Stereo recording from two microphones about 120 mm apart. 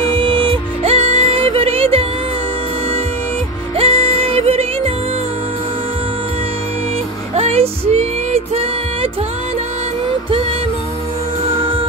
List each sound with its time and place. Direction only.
0.0 s music: 45° right (ahead or behind)
3.7 s music: 55° right (ahead or behind)
7.3 s music: 60° right (ahead or behind)